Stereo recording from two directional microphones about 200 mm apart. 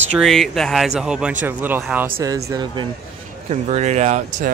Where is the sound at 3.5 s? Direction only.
35° right (ahead or behind).